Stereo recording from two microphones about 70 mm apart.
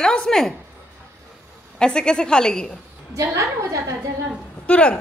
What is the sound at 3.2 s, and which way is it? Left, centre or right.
Speech, right.